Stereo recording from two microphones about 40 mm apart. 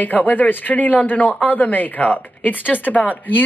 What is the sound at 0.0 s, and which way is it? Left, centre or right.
Speech, left.